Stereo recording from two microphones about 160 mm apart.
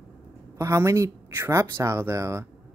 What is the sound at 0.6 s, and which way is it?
Speech, 20° right (ahead or behind).